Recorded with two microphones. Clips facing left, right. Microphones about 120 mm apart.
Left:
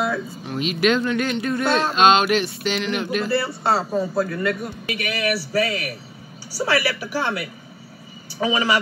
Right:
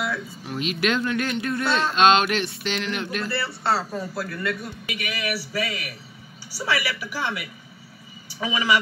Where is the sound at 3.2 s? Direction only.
45° left (ahead or behind).